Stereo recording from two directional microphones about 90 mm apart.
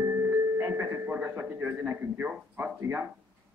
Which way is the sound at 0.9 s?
20° right (ahead or behind).